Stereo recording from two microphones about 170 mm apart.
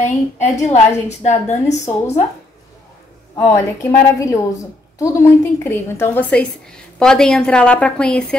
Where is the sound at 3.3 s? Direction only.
15° left (ahead or behind).